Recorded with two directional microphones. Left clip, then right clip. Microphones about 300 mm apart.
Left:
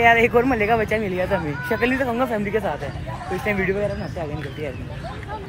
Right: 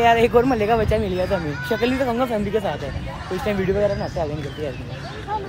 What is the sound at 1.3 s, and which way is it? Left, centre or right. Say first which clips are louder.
Speech: even; centre.